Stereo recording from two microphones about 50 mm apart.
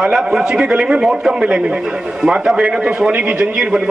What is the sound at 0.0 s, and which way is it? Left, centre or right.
A man's voice, centre.